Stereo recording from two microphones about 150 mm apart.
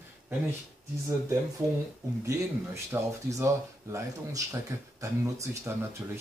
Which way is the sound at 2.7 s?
20° right (ahead or behind).